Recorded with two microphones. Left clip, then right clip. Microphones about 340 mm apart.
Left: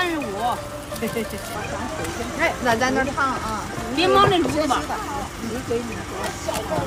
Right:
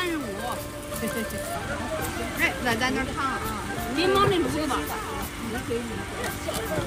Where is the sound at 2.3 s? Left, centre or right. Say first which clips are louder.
Left 5 dB; right.